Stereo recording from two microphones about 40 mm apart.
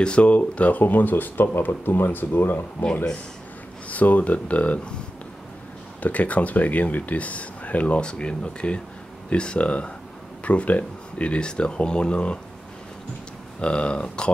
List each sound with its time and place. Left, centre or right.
0.0 s speech: left
0.8 s speech: left
3.9 s speech: left
6.0 s speech: left
8.0 s speech: left
13.6 s speech: left